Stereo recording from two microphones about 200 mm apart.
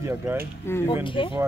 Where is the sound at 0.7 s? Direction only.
10° left (ahead or behind).